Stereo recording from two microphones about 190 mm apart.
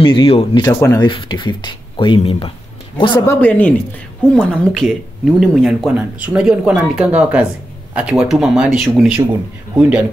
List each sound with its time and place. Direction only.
0.0 s speech: 25° left (ahead or behind)
3.3 s speech: 10° left (ahead or behind)